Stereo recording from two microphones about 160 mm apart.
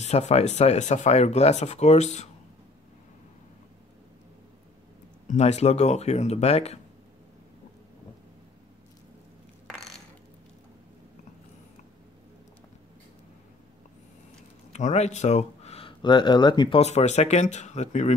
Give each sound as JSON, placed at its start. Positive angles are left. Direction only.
{"t": 0.0, "sound": "speech", "side_deg": 45}
{"t": 5.3, "sound": "speech", "side_deg": 45}
{"t": 14.7, "sound": "speech", "side_deg": 45}
{"t": 16.8, "sound": "speech", "side_deg": 45}